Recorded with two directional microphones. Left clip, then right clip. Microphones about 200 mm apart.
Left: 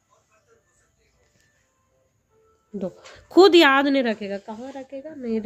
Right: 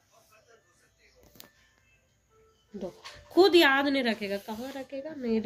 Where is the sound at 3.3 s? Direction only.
55° left (ahead or behind).